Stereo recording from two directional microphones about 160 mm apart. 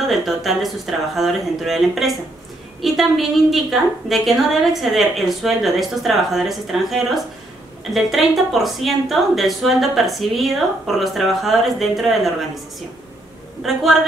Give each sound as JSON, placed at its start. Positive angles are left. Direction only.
{"t": 0.1, "sound": "a woman's voice", "side_deg": 0}
{"t": 13.6, "sound": "a woman's voice", "side_deg": 0}